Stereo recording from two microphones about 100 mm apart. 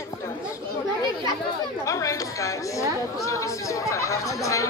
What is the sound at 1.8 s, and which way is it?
Speech, 35° left (ahead or behind).